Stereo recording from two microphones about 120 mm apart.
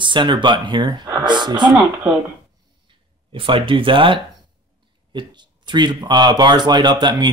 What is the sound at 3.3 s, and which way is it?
Speech, 45° right (ahead or behind).